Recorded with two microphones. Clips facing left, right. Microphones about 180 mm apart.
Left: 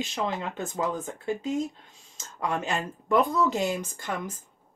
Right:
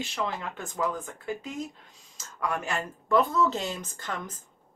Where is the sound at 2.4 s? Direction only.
25° left (ahead or behind).